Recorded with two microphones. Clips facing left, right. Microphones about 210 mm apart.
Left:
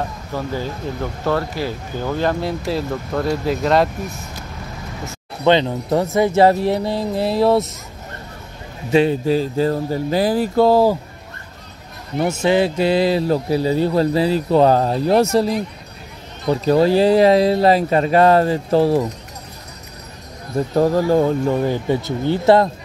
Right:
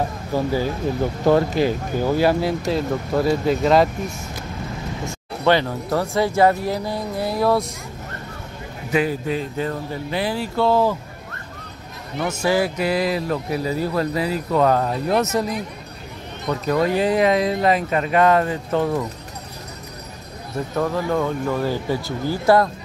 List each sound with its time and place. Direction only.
0.3 s speech: 10° right (ahead or behind)
5.4 s speech: 20° left (ahead or behind)
8.9 s speech: 30° left (ahead or behind)
12.4 s speech: 25° left (ahead or behind)
20.7 s speech: 35° left (ahead or behind)